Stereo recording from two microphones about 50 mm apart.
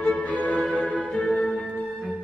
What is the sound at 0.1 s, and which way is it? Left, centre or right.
Music, left.